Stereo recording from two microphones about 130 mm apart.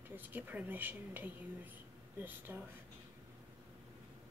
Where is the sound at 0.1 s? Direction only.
15° right (ahead or behind).